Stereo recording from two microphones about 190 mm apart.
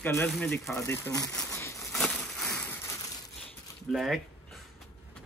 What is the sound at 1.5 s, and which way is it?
Crumpling, 15° left (ahead or behind).